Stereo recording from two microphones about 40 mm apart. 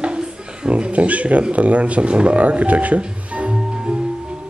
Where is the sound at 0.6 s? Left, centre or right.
Right.